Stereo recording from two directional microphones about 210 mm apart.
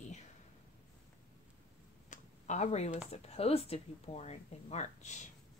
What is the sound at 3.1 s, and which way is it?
Speech, 30° left (ahead or behind).